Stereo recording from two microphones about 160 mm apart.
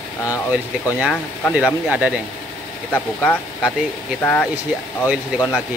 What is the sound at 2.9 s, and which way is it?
Speech, 10° left (ahead or behind).